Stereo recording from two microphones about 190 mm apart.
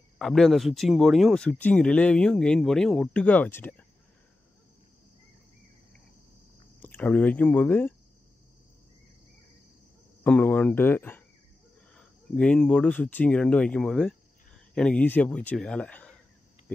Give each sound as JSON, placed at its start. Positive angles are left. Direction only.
{"t": 0.2, "sound": "speech", "side_deg": 0}
{"t": 6.8, "sound": "speech", "side_deg": 10}
{"t": 10.2, "sound": "speech", "side_deg": 10}